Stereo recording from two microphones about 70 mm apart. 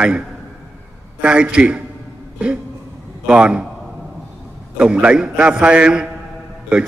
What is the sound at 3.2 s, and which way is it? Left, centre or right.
Speech, centre.